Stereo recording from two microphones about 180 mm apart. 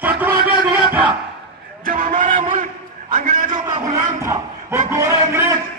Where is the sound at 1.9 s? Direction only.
50° right (ahead or behind).